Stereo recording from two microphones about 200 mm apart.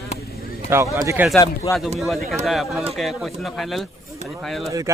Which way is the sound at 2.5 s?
Centre (ahead or behind).